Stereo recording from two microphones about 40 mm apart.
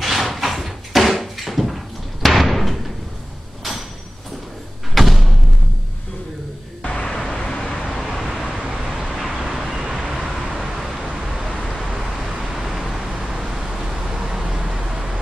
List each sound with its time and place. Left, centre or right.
0.0 s a sound: centre
2.2 s slam: centre
4.9 s thump: centre
6.8 s vehicle: left
7.8 s vehicle: centre
8.8 s vehicle: centre
9.5 s vehicle: centre
10.0 s vehicle: centre
11.7 s vehicle: centre